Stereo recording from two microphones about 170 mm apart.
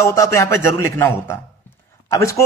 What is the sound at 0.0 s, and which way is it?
A man's voice, 15° left (ahead or behind).